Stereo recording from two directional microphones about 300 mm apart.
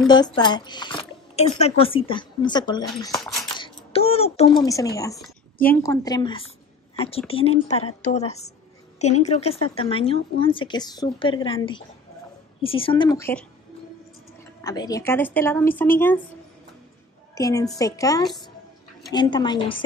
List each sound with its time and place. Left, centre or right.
0.0 s speech: centre
3.5 s a sound: centre
4.6 s a woman's voice: centre
14.6 s speech: centre
17.4 s speech: centre